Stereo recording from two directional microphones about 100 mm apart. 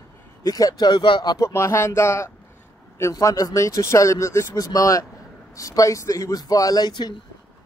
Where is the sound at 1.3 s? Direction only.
30° left (ahead or behind).